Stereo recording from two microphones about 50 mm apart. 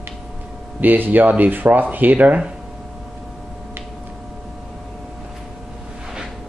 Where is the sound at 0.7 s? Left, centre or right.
Right.